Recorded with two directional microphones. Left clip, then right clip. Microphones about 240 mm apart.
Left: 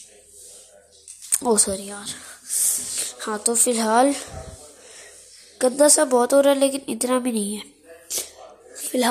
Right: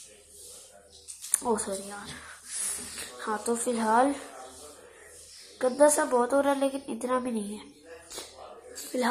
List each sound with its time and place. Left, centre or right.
1.3 s speech: left
5.6 s a woman's voice: left
8.9 s a woman's voice: left